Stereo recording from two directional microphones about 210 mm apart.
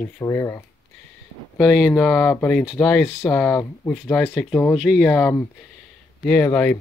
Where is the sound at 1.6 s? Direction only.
Centre (ahead or behind).